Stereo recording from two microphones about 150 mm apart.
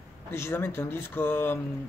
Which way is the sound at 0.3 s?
15° left (ahead or behind).